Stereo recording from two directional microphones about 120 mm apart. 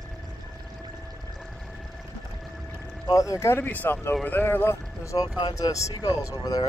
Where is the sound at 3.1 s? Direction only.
25° left (ahead or behind).